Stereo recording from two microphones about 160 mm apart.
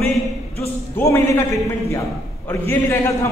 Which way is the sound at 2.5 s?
15° left (ahead or behind).